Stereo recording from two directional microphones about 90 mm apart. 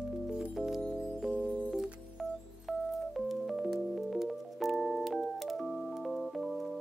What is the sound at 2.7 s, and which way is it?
Music, centre (ahead or behind).